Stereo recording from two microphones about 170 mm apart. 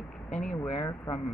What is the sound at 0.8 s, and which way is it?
Speech, 20° left (ahead or behind).